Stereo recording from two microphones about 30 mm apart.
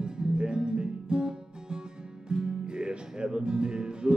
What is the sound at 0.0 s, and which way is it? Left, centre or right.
Music, right.